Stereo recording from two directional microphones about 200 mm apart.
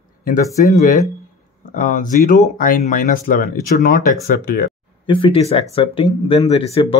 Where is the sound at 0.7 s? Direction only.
35° left (ahead or behind).